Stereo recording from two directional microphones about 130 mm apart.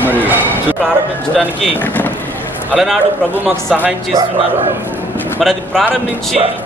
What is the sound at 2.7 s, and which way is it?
Speech, centre (ahead or behind).